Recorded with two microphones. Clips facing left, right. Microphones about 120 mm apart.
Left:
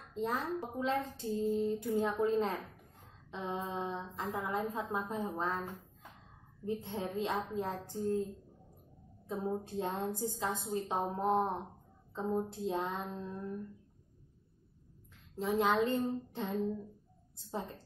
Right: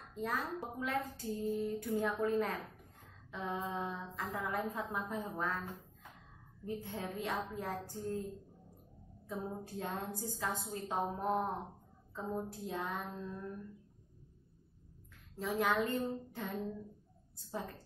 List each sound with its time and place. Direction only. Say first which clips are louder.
0.1 s a woman's voice: left 3 dB; 25° left (ahead or behind)
6.6 s speech: left 4 dB; 20° left (ahead or behind)
9.3 s speech: left 5 dB; 25° left (ahead or behind)
15.3 s speech: left 3 dB; 20° left (ahead or behind)